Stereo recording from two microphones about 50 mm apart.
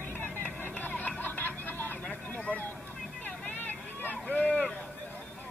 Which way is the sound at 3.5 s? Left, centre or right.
Left.